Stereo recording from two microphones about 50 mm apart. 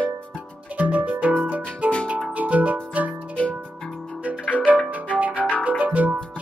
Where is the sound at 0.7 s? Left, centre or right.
Right.